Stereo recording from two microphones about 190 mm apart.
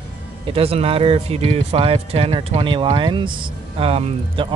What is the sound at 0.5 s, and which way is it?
Speech, 30° right (ahead or behind).